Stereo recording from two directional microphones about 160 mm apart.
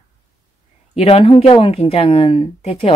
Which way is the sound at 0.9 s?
40° left (ahead or behind).